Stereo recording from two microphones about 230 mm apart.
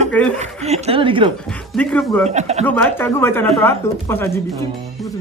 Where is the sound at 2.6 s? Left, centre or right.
Centre.